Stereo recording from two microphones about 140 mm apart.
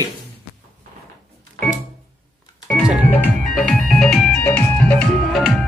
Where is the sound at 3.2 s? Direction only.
5° left (ahead or behind).